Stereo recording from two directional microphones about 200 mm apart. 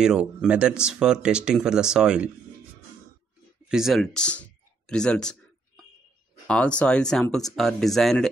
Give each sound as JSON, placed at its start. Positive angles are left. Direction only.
{"t": 0.0, "sound": "speech", "side_deg": -5}
{"t": 3.6, "sound": "a sound", "side_deg": 0}
{"t": 6.4, "sound": "speech", "side_deg": 5}